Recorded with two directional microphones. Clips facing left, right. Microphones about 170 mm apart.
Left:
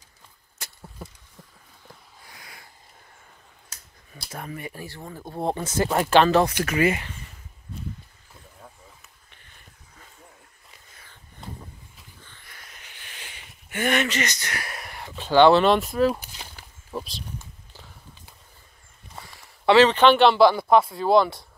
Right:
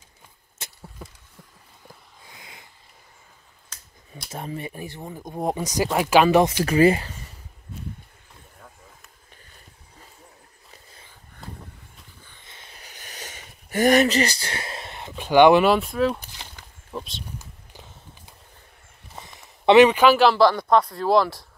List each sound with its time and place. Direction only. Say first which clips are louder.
0.6 s vehicle: right 1 dB; 25° right (ahead or behind)
2.2 s a sound: right 1 dB; 20° right (ahead or behind)
4.3 s speech: right 3 dB; 25° right (ahead or behind); by 6.4 s 10° right (ahead or behind)
6.4 s speech: right 5 dB; 30° right (ahead or behind)
12.3 s a sound: right 1 dB; 20° right (ahead or behind); by 16.3 s centre (ahead or behind)
16.9 s speech: left 1 dB; centre (ahead or behind)
19.1 s speech: right 1 dB; 20° right (ahead or behind); by 21.5 s centre (ahead or behind)